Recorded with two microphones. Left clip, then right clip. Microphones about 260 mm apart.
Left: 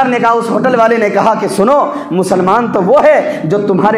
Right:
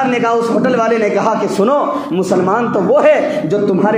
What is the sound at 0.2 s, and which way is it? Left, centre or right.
A man's voice, left.